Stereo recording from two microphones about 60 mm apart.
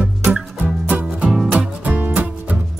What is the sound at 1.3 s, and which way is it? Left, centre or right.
Music, centre.